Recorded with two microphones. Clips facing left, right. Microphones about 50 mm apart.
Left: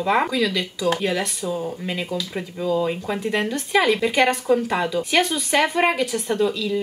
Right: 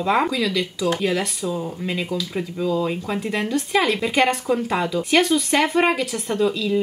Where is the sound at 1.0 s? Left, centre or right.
Centre.